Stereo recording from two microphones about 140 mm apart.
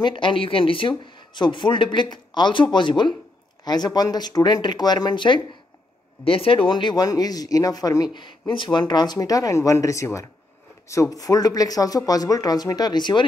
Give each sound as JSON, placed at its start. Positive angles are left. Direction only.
{"t": 0.0, "sound": "speech", "side_deg": 35}